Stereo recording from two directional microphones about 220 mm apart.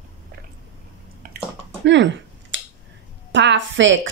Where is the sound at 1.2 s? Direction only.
40° right (ahead or behind).